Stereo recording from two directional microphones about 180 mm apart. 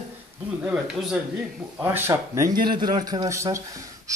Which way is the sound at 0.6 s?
5° right (ahead or behind).